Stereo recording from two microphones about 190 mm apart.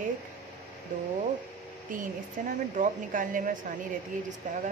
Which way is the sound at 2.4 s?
45° right (ahead or behind).